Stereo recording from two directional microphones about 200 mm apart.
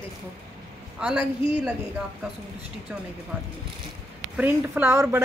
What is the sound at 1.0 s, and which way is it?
Speech, 5° right (ahead or behind).